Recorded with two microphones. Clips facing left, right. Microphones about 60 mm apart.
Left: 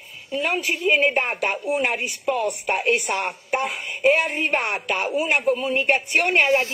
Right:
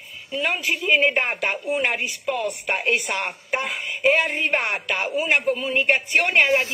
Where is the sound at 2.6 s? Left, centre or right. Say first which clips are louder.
Left 1 dB; right.